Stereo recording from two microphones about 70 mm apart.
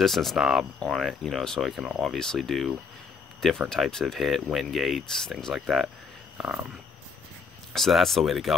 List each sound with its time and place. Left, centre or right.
0.0 s speech: centre
6.3 s a sound: centre
7.7 s speech: centre